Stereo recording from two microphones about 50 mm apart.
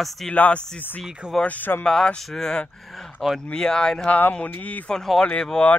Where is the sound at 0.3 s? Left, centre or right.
Left.